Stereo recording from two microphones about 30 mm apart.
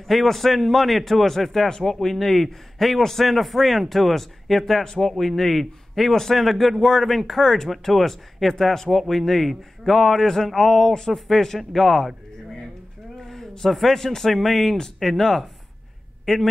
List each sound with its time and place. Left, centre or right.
0.1 s a man's voice: centre
11.1 s a man's voice: centre
13.2 s a man's voice: centre